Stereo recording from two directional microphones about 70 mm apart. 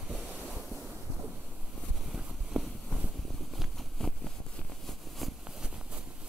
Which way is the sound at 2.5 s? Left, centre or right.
Centre.